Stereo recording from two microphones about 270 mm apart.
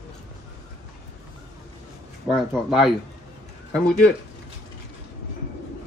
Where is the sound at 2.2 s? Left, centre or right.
Centre.